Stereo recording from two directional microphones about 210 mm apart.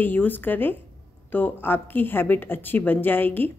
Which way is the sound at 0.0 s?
10° left (ahead or behind).